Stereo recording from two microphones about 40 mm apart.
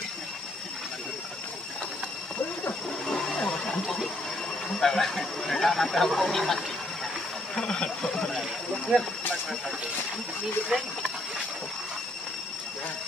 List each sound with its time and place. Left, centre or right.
3.1 s a sound: centre
4.7 s speech: centre
7.5 s speech: centre
10.7 s speech: right